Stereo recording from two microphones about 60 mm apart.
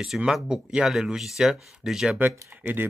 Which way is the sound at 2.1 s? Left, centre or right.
Right.